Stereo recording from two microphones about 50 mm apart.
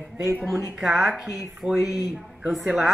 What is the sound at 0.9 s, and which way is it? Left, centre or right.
A woman's voice, centre.